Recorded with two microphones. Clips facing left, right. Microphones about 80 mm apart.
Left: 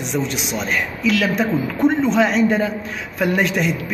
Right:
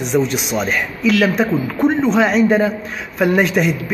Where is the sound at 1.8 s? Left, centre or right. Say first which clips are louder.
Right 1 dB; right.